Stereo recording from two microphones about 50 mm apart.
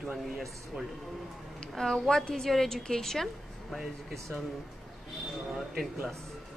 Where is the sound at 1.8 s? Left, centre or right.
Centre.